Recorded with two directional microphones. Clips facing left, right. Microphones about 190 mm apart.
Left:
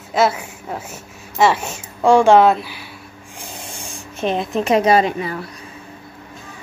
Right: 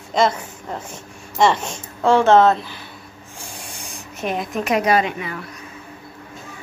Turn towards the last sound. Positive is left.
turn(degrees=35)  # may be behind; listen again after turning